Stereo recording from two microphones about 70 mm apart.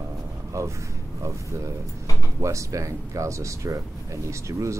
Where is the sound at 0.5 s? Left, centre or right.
Right.